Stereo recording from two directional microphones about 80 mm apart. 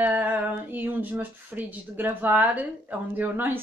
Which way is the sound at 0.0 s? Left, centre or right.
Right.